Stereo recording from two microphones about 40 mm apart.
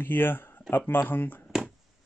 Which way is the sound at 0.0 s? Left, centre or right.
Left.